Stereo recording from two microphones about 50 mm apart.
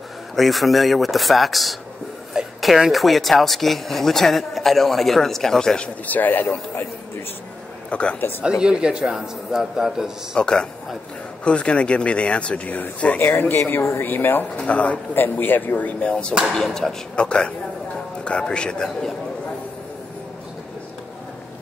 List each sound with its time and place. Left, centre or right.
0.4 s speech: centre
6.0 s speech: left
7.9 s speech: left
8.4 s a man's voice: centre
10.3 s a man's voice: centre
13.2 s speech: left
14.6 s speech: left
15.1 s speech: left
16.6 s a man's voice: centre
17.1 s a man's voice: centre